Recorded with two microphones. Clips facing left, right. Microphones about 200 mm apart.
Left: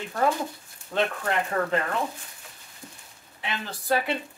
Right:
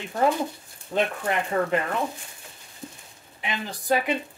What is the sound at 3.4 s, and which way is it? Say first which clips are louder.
Speech: right 2 dB; 15° right (ahead or behind).